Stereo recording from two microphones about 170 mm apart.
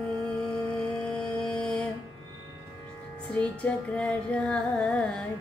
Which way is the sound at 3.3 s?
5° left (ahead or behind).